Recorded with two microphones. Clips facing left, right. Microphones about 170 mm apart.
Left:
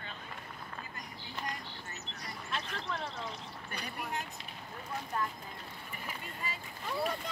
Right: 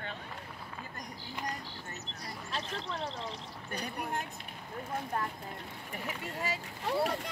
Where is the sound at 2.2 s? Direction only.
35° right (ahead or behind).